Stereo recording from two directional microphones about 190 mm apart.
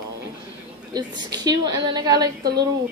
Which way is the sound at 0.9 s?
20° right (ahead or behind).